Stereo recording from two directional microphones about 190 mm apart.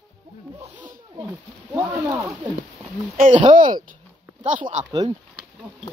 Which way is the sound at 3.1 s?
45° right (ahead or behind).